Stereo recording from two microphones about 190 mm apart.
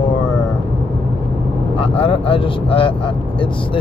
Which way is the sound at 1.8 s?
30° left (ahead or behind).